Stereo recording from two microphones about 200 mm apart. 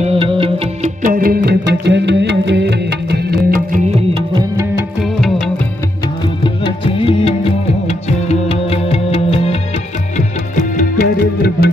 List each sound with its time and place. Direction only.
0.0 s music: 30° right (ahead or behind)
1.0 s music: 45° right (ahead or behind)
6.4 s music: 25° left (ahead or behind); by 11.7 s 50° left (ahead or behind)